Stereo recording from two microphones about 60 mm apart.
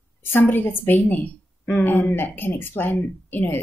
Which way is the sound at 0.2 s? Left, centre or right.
Left.